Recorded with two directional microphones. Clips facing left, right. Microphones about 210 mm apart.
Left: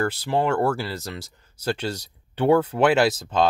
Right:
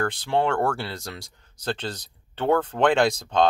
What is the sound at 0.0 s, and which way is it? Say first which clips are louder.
Speech: left 1 dB; 10° left (ahead or behind).